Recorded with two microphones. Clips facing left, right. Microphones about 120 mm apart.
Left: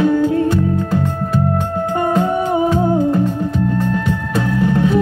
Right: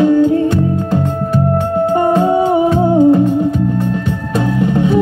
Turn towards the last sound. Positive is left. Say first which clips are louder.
# right 2 dB
turn(degrees=-20)  # may be behind; listen again after turning